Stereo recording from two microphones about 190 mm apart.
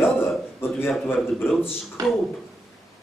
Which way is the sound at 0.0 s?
10° left (ahead or behind).